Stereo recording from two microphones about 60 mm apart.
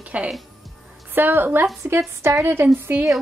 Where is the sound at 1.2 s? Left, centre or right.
Right.